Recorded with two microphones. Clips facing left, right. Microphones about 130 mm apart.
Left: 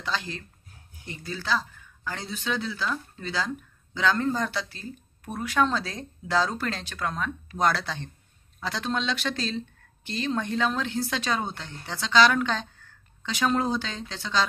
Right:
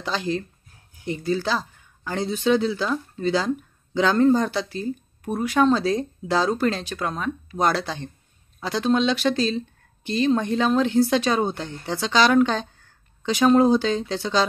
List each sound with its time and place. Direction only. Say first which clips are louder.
0.0 s speech: right 6 dB; 20° right (ahead or behind)